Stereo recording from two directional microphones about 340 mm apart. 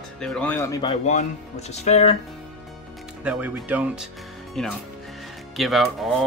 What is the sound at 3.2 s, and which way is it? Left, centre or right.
Speech, centre.